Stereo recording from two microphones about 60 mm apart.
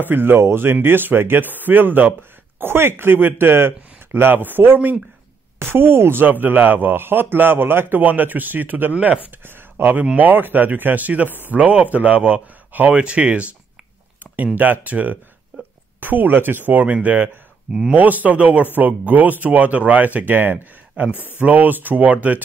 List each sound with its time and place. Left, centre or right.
0.0 s speech: right
5.6 s speech: right
8.9 s speech: centre
9.4 s speech: right
21.0 s speech: right